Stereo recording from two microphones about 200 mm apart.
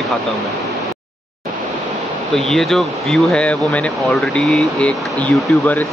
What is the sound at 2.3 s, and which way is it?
Speech, centre (ahead or behind).